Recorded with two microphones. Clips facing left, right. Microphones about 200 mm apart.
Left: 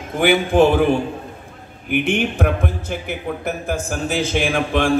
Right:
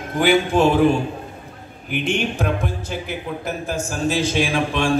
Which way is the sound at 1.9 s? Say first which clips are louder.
Left 3 dB; 55° left (ahead or behind).